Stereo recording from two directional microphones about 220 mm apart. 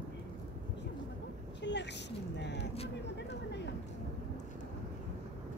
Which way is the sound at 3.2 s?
50° left (ahead or behind).